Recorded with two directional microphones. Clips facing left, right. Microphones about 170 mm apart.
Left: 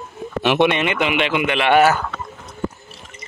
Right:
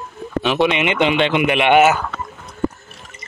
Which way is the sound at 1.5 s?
20° right (ahead or behind).